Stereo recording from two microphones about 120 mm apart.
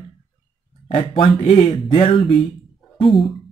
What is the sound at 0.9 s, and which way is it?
Speech, 45° left (ahead or behind).